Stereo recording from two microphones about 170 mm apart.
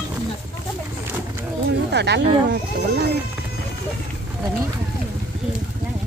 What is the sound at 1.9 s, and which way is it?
Speech, 80° right.